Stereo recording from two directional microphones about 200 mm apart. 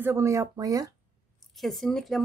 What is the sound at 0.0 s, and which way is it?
Speech, 15° right (ahead or behind).